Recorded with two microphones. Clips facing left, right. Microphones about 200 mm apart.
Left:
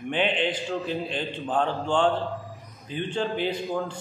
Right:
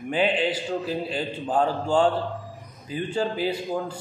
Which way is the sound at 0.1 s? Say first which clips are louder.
Right 2 dB; 5° right (ahead or behind).